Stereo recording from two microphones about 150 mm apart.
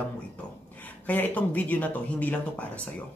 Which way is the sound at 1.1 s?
10° left (ahead or behind).